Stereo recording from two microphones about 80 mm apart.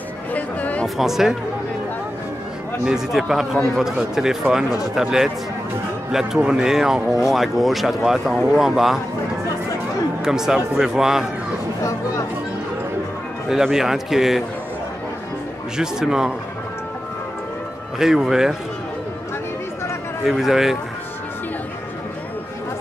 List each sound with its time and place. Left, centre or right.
0.3 s a sound: centre
0.8 s speech: centre
2.8 s speech: centre
10.2 s speech: centre
13.5 s speech: centre
15.8 s a man's voice: centre
17.9 s speech: centre
20.2 s speech: centre